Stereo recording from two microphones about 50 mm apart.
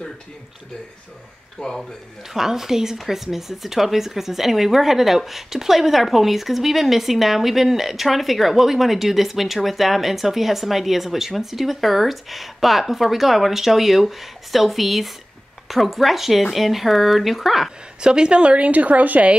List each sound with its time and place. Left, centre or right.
1.6 s speech: left
2.3 s a woman's voice: centre
18.0 s a woman's voice: centre